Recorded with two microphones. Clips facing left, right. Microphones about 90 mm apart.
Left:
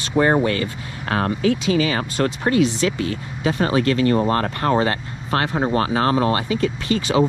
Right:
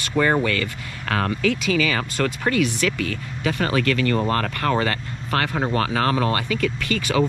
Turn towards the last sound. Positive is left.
turn(degrees=25)  # may be behind; listen again after turning